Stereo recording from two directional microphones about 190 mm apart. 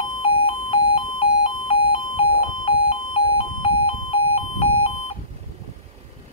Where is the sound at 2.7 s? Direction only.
30° left (ahead or behind).